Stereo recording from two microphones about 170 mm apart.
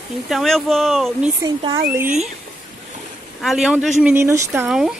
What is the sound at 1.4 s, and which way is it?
Speech, 20° right (ahead or behind).